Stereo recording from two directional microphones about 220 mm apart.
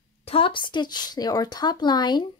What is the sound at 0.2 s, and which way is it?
Speech, 25° left (ahead or behind).